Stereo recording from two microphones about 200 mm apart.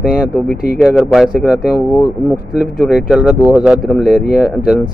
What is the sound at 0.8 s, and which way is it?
Speech, 5° right (ahead or behind).